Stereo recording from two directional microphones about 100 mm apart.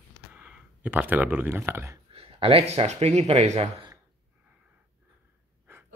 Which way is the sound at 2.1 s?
70° right (ahead or behind).